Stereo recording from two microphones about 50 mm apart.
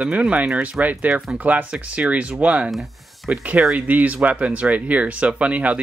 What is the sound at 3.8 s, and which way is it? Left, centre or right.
Speech, right.